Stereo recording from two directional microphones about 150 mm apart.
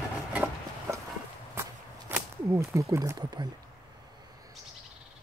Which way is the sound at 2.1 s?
20° right (ahead or behind).